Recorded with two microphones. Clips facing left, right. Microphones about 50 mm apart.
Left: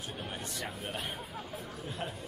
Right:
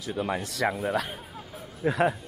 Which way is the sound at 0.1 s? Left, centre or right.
Right.